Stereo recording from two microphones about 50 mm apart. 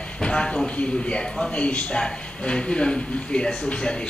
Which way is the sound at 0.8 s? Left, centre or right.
Left.